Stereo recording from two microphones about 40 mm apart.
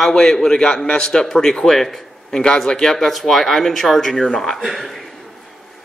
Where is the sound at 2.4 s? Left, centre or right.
Centre.